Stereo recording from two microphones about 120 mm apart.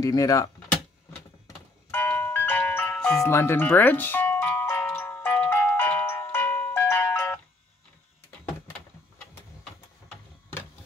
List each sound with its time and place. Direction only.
0.0 s speech: 30° left (ahead or behind)
1.9 s music: 15° left (ahead or behind)
3.2 s music: 20° left (ahead or behind)